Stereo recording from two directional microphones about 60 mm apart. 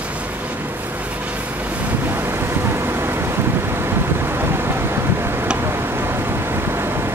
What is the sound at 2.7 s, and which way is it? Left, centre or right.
Vehicle, right.